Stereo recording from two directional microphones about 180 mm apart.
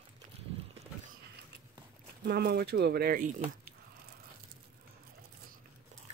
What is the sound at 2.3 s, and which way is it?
Speech, 60° right (ahead or behind).